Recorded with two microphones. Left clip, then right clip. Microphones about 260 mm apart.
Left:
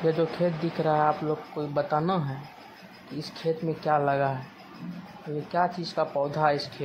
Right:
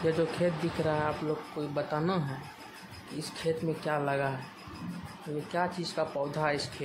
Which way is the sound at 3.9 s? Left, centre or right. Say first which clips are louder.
Left 7 dB; centre.